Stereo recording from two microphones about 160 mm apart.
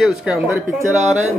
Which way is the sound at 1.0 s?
45° right (ahead or behind).